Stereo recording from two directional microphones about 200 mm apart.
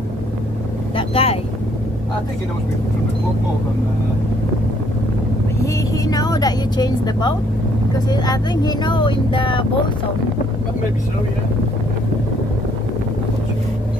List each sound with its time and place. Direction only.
0.9 s speech: 30° left (ahead or behind)
5.6 s a woman's voice: 15° left (ahead or behind)